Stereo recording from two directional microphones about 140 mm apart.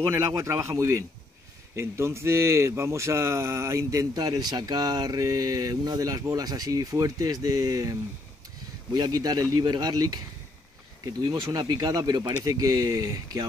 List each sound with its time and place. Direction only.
0.0 s speech: 20° right (ahead or behind)